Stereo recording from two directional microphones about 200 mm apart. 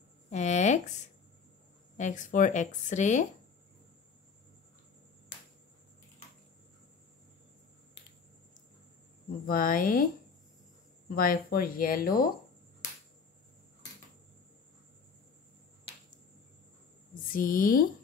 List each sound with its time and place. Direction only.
0.3 s a sound: 35° left (ahead or behind)
2.0 s speech: 40° left (ahead or behind)
9.5 s speech: 45° left (ahead or behind)
11.1 s speech: 45° left (ahead or behind)
17.1 s a woman's voice: 45° left (ahead or behind)